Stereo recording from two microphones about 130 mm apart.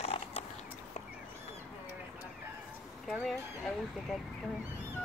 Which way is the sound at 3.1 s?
Centre (ahead or behind).